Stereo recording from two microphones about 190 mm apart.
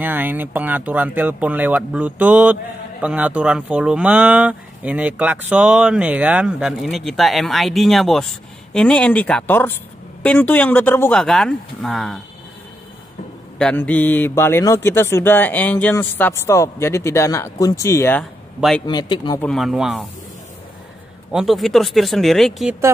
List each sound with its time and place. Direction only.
0.0 s speech: 10° right (ahead or behind)
13.6 s speech: 5° left (ahead or behind); by 19.4 s 25° left (ahead or behind)
19.4 s speech: centre (ahead or behind)
21.3 s speech: centre (ahead or behind)